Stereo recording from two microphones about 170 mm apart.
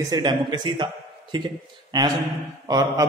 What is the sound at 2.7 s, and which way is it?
Speech, 20° right (ahead or behind).